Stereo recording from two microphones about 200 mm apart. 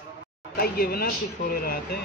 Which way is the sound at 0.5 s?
50° left (ahead or behind).